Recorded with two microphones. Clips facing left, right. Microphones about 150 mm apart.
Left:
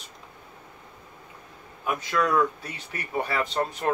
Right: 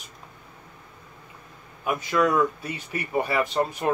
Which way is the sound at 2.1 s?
10° right (ahead or behind).